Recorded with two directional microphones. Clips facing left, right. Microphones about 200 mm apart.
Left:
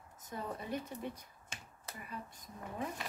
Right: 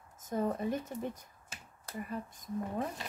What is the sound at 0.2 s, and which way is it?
Speech, 45° right (ahead or behind).